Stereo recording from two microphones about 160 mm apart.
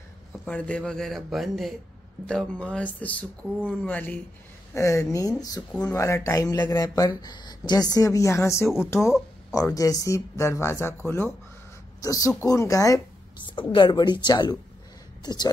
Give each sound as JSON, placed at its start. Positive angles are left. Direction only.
{"t": 0.5, "sound": "speech", "side_deg": 10}
{"t": 5.7, "sound": "speech", "side_deg": 10}
{"t": 12.0, "sound": "speech", "side_deg": 20}
{"t": 13.5, "sound": "speech", "side_deg": 30}